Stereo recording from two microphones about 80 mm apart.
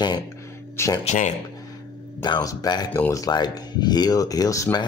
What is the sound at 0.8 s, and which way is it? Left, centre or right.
Speech, left.